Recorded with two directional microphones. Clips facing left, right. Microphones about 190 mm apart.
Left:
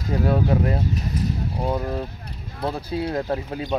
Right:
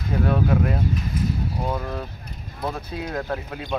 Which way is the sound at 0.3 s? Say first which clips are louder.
Left 1 dB; 30° left (ahead or behind).